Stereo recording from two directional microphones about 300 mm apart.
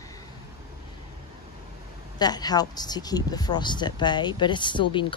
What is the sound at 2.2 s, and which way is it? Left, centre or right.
Speech, centre.